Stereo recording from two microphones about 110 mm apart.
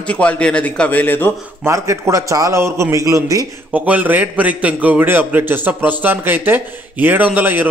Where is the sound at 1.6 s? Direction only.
25° right (ahead or behind).